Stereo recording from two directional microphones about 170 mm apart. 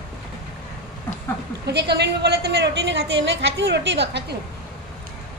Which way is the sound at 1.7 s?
80° right.